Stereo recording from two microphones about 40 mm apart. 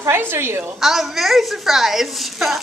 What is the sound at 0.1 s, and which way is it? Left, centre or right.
Speech, right.